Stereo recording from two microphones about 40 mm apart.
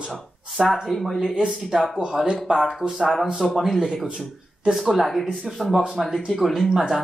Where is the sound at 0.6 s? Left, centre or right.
Centre.